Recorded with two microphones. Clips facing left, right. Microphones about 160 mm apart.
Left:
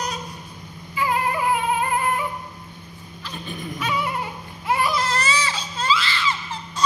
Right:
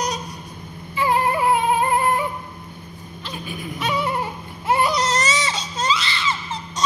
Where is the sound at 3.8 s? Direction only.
25° right (ahead or behind).